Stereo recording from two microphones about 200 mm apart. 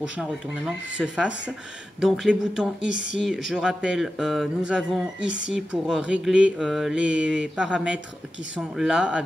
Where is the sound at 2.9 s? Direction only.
60° right (ahead or behind).